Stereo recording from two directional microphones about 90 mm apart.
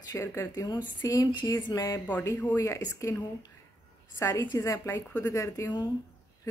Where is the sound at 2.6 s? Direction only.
35° left (ahead or behind).